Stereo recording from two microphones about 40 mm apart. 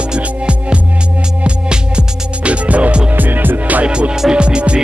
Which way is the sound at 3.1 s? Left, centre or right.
Right.